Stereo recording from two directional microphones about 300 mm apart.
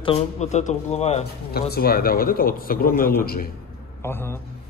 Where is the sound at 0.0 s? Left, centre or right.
Left.